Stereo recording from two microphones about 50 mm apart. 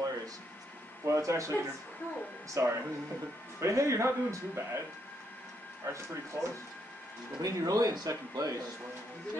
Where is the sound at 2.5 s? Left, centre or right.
Right.